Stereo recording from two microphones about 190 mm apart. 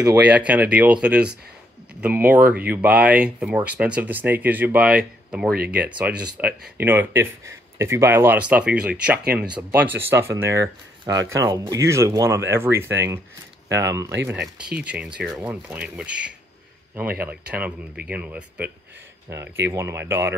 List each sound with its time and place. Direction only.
0.1 s speech: 5° right (ahead or behind)